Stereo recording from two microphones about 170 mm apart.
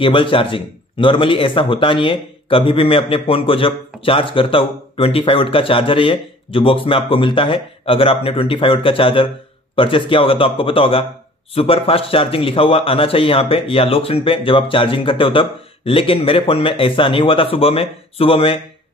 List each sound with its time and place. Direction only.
0.0 s speech: 30° left (ahead or behind)